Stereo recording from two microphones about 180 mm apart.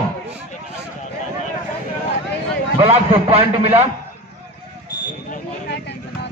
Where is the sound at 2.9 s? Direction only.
35° right (ahead or behind).